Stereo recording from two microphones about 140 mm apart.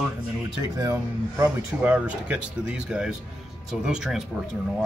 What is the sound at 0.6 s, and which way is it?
Speech, 30° right (ahead or behind).